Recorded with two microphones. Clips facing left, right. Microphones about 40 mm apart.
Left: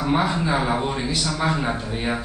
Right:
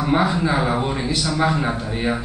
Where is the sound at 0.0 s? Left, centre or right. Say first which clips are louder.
Right 3 dB; centre.